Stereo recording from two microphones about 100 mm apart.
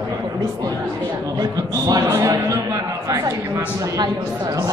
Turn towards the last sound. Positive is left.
turn(degrees=-40)  # may be behind; listen again after turning